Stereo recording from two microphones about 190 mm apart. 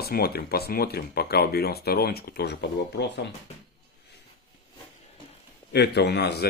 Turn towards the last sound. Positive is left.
turn(degrees=60)  # may be behind; listen again after turning